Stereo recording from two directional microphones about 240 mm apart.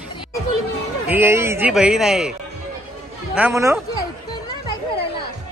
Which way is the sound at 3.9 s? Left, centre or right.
Centre.